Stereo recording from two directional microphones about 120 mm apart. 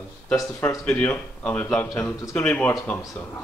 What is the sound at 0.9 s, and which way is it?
A man's voice, 15° left (ahead or behind).